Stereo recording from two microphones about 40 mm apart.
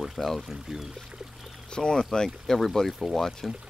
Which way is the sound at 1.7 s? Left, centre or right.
Centre.